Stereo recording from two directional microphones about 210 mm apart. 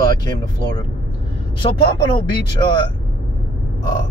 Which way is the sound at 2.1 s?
20° left (ahead or behind).